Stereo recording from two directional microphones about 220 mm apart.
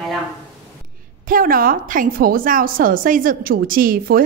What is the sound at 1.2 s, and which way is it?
A woman's voice, 40° right (ahead or behind).